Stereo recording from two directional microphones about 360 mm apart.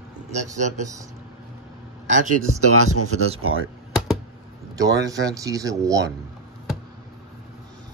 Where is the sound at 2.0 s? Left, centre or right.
Centre.